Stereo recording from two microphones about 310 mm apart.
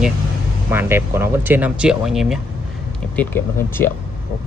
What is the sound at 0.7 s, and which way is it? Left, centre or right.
Speech, centre.